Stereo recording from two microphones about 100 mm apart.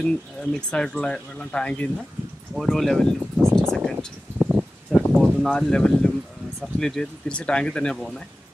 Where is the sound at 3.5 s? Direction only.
5° left (ahead or behind).